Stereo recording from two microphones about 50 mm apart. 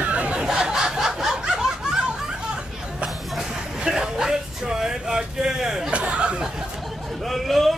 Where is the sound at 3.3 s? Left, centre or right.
Centre.